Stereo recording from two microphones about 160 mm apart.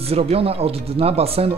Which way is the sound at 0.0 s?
40° right (ahead or behind).